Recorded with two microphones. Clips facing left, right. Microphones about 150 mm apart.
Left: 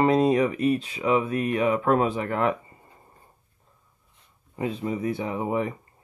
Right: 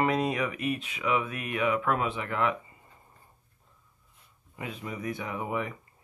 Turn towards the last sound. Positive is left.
turn(degrees=30)  # may be behind; listen again after turning